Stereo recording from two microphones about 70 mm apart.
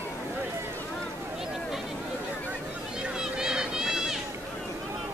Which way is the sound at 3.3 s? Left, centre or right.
Centre.